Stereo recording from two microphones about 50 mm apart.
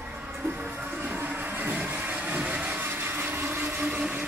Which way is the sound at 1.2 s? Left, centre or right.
Right.